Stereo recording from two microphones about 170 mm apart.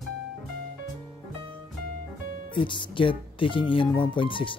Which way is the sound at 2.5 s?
30° left (ahead or behind).